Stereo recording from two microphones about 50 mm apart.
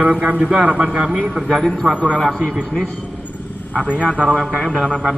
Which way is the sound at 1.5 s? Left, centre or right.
Centre.